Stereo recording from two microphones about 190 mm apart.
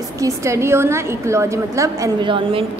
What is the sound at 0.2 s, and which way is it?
A woman's voice, 15° right (ahead or behind).